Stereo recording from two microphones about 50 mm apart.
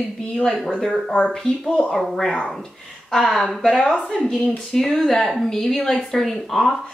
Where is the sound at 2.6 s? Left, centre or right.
Centre.